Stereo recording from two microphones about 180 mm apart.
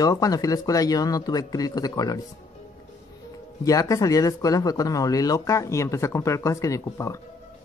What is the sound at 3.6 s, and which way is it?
Speech, 20° left (ahead or behind).